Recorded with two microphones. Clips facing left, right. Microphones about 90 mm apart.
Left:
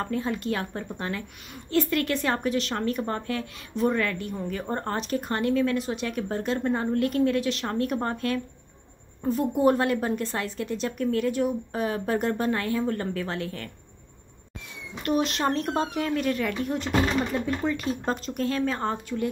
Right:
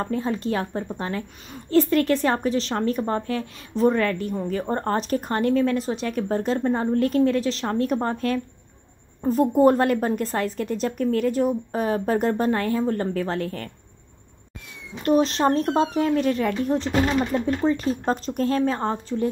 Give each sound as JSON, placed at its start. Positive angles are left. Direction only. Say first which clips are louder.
{"t": 0.0, "sound": "a woman's voice", "louder": "right 3 dB", "side_deg": -35}
{"t": 15.0, "sound": "a woman's voice", "louder": "right 6 dB", "side_deg": -35}